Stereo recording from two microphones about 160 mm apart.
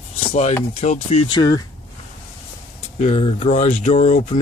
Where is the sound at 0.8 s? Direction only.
45° left (ahead or behind).